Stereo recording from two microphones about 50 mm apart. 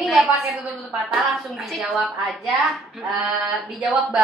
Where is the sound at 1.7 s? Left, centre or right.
Centre.